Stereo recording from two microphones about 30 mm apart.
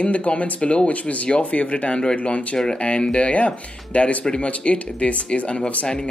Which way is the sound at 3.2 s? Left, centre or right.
Left.